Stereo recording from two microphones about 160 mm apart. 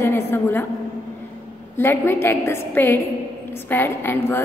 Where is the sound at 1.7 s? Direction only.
15° left (ahead or behind).